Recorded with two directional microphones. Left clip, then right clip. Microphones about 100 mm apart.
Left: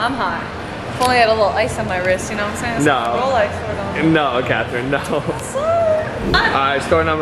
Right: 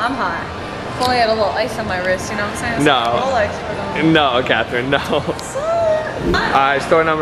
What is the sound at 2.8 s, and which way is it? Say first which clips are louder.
Speech: right 2 dB; 15° right (ahead or behind).